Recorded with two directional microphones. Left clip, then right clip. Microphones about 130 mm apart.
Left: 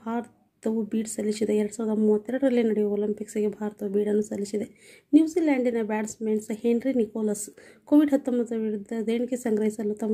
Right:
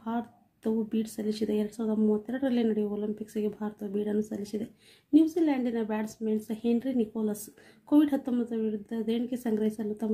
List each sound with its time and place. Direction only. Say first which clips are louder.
0.0 s speech: left 3 dB; 20° left (ahead or behind)